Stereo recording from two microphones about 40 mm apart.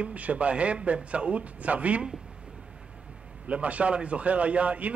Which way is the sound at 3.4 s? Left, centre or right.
Right.